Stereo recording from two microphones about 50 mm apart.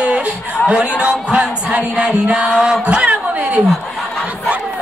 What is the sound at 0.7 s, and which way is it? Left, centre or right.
Speech, centre.